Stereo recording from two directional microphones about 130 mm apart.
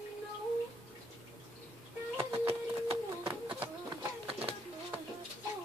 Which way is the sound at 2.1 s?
20° right (ahead or behind).